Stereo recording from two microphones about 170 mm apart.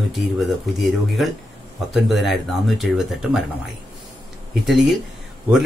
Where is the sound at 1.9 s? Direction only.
Centre (ahead or behind).